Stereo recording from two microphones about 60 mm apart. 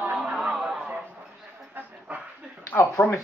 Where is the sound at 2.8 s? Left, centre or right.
Left.